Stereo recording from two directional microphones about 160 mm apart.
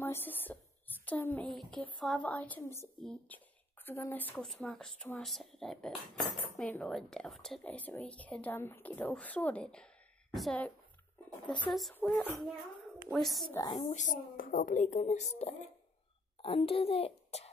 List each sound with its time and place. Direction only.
0.0 s a sound: 10° left (ahead or behind)
1.5 s a woman's voice: 5° left (ahead or behind)
11.2 s speech: 30° left (ahead or behind)
11.9 s a woman's voice: 10° left (ahead or behind)
13.1 s a woman's voice: centre (ahead or behind)
13.5 s a woman's voice: 20° left (ahead or behind)
13.7 s a woman's voice: 45° left (ahead or behind)